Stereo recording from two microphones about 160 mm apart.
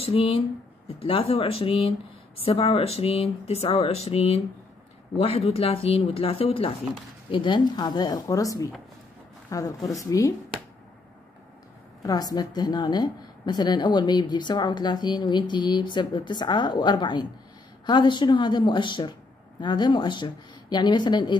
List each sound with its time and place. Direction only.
0.0 s a woman's voice: 35° left (ahead or behind)
12.0 s a woman's voice: 25° left (ahead or behind)